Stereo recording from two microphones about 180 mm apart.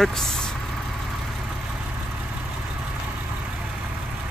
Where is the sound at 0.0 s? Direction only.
Centre (ahead or behind).